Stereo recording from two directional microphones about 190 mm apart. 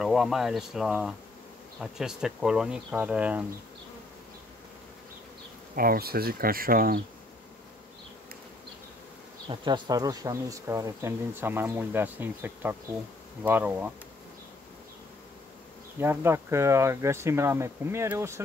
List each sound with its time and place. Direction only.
0.0 s speech: centre (ahead or behind)
5.8 s speech: 50° right (ahead or behind)
9.5 s speech: 20° right (ahead or behind)
16.0 s speech: 10° right (ahead or behind)